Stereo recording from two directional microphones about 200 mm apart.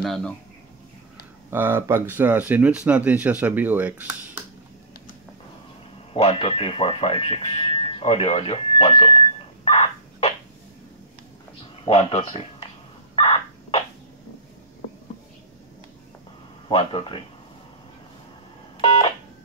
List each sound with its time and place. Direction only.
0.0 s speech: centre (ahead or behind)
1.5 s speech: 10° right (ahead or behind)
6.1 s speech: 30° left (ahead or behind)
9.7 s a sound: 30° left (ahead or behind)
11.8 s speech: 30° left (ahead or behind)
13.1 s a sound: 25° left (ahead or behind)
16.6 s speech: 25° left (ahead or behind)
18.8 s telephone dialing: 30° left (ahead or behind)